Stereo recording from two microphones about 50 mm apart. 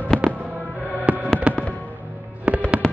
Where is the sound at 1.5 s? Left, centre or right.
Right.